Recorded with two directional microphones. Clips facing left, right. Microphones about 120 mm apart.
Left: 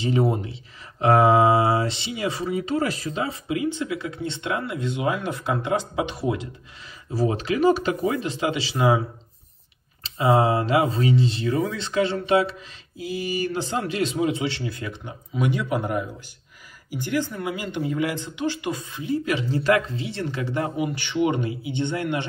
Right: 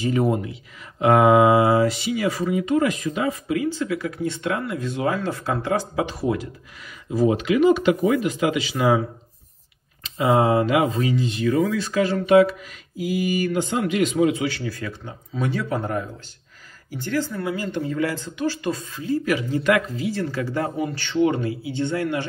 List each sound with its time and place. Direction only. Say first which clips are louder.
0.0 s speech: right 1 dB; 25° left (ahead or behind)
7.3 s speech: right 1 dB; 35° left (ahead or behind)
10.0 s speech: right 1 dB; 30° left (ahead or behind)